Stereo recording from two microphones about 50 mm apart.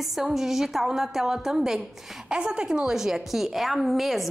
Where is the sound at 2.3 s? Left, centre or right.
Centre.